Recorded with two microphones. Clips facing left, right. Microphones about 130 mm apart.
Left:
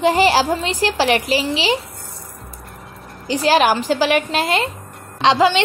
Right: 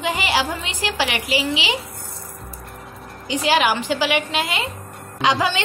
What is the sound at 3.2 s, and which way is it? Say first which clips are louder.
A woman's voice: left 4 dB; 40° left (ahead or behind).